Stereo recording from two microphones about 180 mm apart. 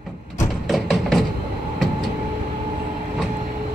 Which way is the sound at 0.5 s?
Centre (ahead or behind).